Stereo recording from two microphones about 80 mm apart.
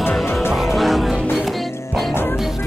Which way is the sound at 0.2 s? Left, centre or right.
Left.